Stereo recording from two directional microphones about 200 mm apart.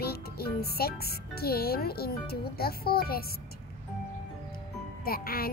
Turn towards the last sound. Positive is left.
turn(degrees=50)  # may be behind; listen again after turning